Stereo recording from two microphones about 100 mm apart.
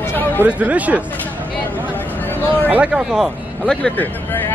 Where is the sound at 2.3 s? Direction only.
15° left (ahead or behind).